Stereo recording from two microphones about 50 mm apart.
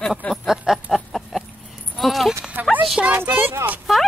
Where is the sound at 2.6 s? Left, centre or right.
Right.